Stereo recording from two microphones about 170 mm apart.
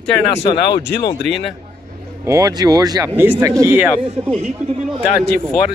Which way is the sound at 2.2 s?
20° right (ahead or behind).